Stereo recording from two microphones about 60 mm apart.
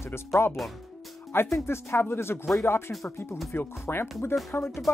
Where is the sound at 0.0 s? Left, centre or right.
Left.